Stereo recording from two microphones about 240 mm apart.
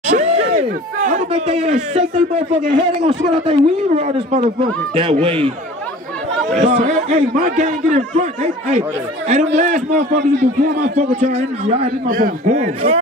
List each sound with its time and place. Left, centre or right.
0.0 s speech: right
6.5 s speech: right